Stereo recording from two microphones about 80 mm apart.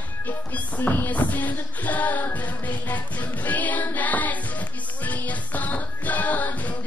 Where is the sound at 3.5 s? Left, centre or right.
Left.